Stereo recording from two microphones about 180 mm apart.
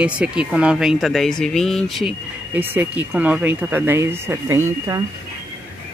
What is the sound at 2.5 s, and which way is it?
Speech, 10° right (ahead or behind).